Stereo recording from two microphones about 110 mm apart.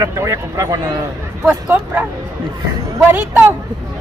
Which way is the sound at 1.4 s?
15° right (ahead or behind).